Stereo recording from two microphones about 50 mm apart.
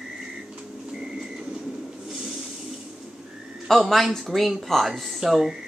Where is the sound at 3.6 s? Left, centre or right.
Centre.